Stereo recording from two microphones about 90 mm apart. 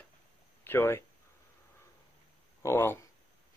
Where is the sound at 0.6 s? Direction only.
25° left (ahead or behind).